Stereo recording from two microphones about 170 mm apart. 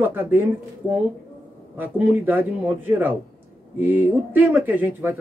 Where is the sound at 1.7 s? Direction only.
10° right (ahead or behind).